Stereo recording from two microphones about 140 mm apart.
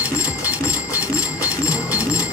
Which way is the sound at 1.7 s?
10° right (ahead or behind).